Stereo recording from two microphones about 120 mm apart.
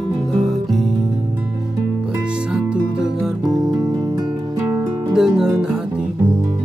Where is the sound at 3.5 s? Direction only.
30° right (ahead or behind).